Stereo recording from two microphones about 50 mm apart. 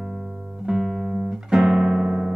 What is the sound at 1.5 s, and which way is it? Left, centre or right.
Music, centre.